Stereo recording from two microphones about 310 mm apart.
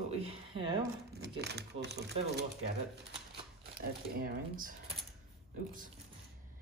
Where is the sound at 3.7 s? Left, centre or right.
Right.